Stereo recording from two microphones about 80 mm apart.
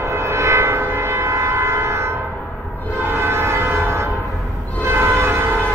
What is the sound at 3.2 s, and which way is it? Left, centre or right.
Train, right.